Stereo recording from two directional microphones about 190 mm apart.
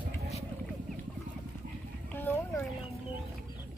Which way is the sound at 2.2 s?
10° left (ahead or behind).